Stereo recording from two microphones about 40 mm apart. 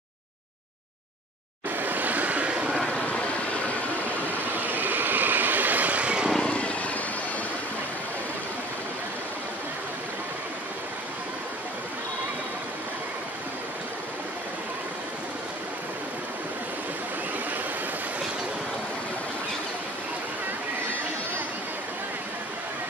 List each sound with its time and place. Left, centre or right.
1.8 s vehicle: right
2.9 s vehicle: left
4.6 s vehicle: right
6.4 s vehicle: left